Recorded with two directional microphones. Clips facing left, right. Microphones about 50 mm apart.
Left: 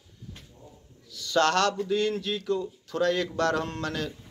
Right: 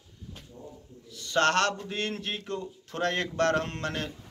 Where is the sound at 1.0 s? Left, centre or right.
Right.